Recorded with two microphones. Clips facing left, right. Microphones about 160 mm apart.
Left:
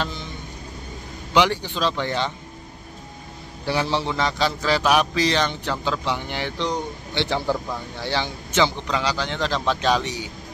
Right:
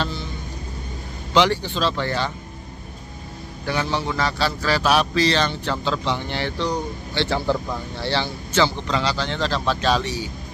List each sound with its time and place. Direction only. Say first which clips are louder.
0.0 s vehicle: right 2 dB; 15° left (ahead or behind)
1.3 s speech: right 1 dB; 15° left (ahead or behind)
3.9 s speech: even; 25° left (ahead or behind)